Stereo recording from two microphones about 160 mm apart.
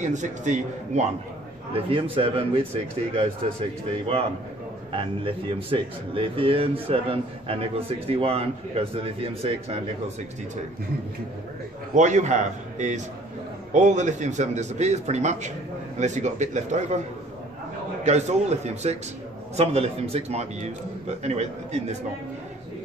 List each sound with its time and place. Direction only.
0.0 s a man's voice: 50° right (ahead or behind)
1.7 s speech: 35° right (ahead or behind)
4.9 s speech: 35° right (ahead or behind)
11.9 s a man's voice: 50° right (ahead or behind)
18.0 s a man's voice: 45° right (ahead or behind)